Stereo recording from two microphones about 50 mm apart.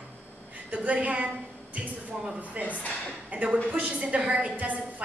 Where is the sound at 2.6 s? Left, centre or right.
Right.